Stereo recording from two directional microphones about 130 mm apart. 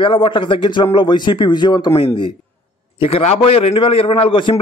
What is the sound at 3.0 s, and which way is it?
A man's voice, 50° left (ahead or behind).